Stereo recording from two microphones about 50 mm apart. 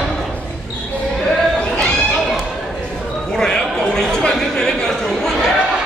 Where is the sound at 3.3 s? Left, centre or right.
Centre.